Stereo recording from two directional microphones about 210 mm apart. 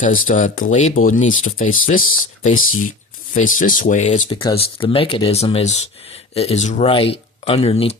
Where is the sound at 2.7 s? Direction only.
85° left.